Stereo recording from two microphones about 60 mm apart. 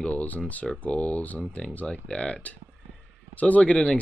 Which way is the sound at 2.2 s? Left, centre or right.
Centre.